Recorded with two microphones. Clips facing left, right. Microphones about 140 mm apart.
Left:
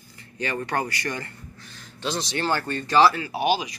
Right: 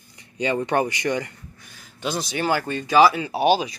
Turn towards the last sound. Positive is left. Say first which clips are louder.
# right 4 dB
turn(degrees=-30)  # may be behind; listen again after turning